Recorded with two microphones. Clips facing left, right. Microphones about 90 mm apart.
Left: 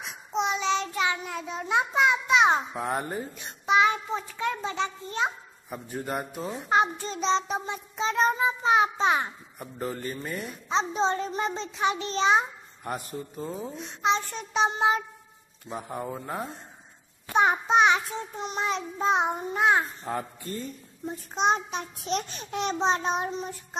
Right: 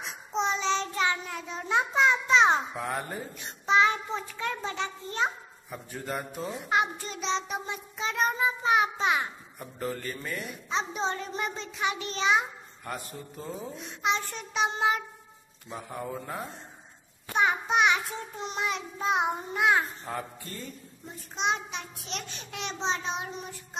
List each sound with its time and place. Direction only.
0.3 s child singing: 10° left (ahead or behind)
2.7 s child singing: 30° left (ahead or behind)
3.6 s child singing: 15° left (ahead or behind)
17.4 s child singing: 35° left (ahead or behind)
21.1 s a child's voice: 40° left (ahead or behind)